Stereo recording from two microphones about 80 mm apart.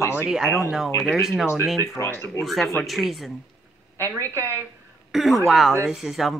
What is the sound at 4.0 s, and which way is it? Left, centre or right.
Speech, right.